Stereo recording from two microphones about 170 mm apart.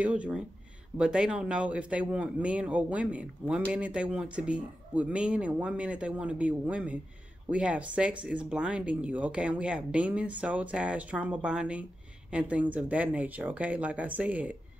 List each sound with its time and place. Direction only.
0.0 s speech: 5° right (ahead or behind)